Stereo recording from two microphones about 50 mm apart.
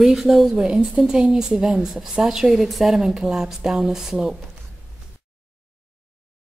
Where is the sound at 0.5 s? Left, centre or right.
Centre.